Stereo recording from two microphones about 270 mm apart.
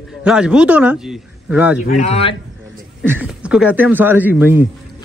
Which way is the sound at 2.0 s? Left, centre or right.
Left.